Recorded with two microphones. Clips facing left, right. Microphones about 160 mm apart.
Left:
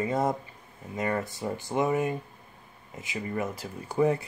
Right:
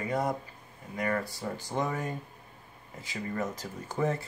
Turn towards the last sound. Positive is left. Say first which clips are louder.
# left 5 dB
turn(degrees=15)  # may be behind; listen again after turning